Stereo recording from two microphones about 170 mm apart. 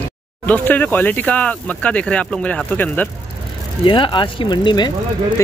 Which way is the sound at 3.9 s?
30° left (ahead or behind).